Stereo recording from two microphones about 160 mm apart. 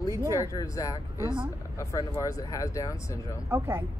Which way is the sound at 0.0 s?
20° left (ahead or behind).